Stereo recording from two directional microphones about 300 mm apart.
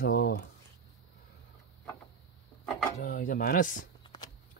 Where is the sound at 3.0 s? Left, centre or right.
Left.